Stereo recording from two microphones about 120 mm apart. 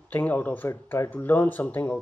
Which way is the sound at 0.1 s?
15° left (ahead or behind).